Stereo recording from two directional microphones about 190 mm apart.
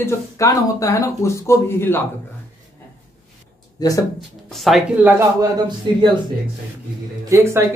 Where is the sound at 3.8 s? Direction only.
20° left (ahead or behind).